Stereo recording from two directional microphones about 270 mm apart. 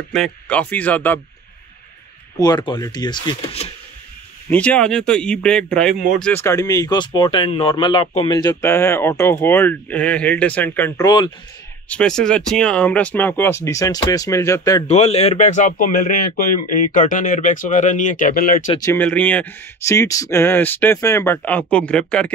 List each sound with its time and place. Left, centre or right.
0.1 s speech: centre
2.4 s speech: centre
4.5 s speech: centre
11.9 s speech: centre; by 18.6 s left
18.7 s speech: centre